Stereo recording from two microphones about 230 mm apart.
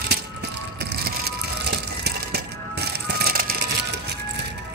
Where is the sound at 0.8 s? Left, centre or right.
Right.